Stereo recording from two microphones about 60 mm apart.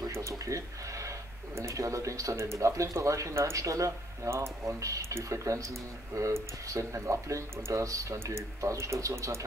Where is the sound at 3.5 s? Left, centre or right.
Right.